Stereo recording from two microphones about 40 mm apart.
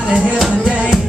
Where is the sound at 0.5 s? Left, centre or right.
Centre.